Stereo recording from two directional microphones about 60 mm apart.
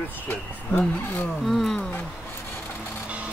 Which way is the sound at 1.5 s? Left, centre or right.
Centre.